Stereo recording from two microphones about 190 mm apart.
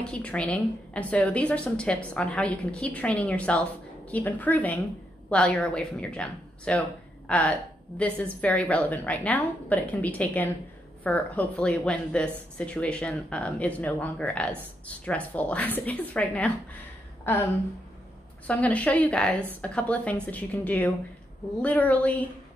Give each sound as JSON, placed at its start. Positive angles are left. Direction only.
{"t": 0.0, "sound": "a woman's voice", "side_deg": 5}
{"t": 18.5, "sound": "a woman's voice", "side_deg": 5}